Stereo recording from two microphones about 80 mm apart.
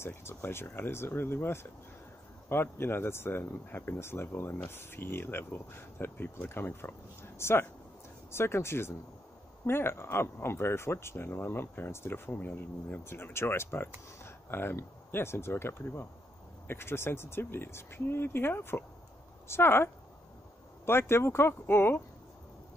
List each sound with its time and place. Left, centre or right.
0.0 s speech: left